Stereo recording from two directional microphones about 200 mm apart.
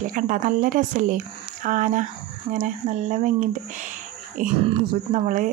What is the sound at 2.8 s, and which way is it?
Speech, 50° right (ahead or behind).